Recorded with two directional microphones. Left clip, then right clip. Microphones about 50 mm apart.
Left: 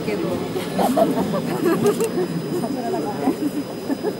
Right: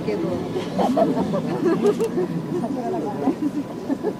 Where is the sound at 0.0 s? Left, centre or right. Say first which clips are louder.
Left 1 dB; left.